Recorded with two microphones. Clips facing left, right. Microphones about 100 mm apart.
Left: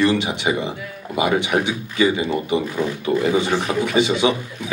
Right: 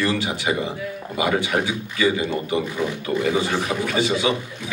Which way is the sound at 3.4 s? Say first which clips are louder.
Left 3 dB; 20° left (ahead or behind).